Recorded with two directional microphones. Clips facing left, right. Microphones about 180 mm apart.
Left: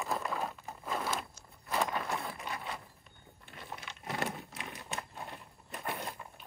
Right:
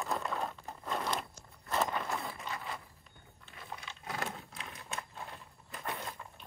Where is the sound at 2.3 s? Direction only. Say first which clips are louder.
Left 1 dB; 15° left (ahead or behind).